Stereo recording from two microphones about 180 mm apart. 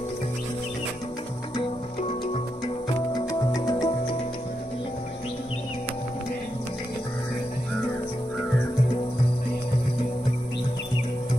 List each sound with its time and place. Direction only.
3.2 s music: 20° left (ahead or behind)